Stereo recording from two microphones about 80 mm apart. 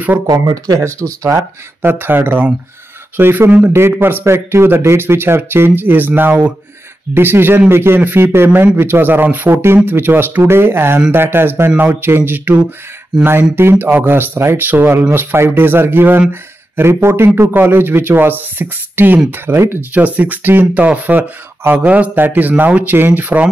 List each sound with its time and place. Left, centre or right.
0.3 s speech: right
0.8 s speech: right
19.8 s speech: centre